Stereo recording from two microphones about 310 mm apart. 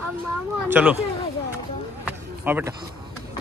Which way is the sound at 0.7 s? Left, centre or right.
Centre.